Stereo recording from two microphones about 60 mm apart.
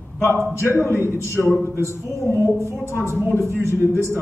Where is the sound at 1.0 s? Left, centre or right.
Right.